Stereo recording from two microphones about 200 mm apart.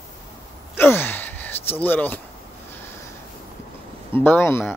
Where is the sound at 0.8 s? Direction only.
10° left (ahead or behind).